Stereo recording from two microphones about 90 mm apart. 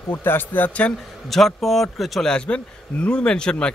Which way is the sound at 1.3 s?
Centre (ahead or behind).